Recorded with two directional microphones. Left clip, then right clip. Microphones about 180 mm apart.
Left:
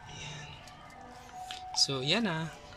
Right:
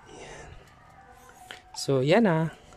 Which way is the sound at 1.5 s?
45° right (ahead or behind).